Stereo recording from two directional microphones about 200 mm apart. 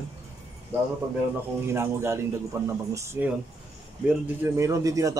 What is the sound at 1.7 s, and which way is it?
A man's voice, 15° right (ahead or behind).